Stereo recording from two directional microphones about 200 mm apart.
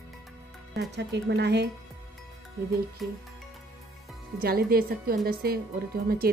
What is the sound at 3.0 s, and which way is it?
Speech, centre (ahead or behind).